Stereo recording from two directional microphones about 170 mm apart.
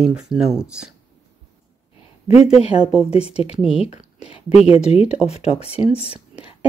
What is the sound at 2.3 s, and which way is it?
Speech, 40° left (ahead or behind).